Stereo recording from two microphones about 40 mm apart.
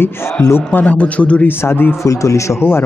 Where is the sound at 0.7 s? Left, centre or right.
Left.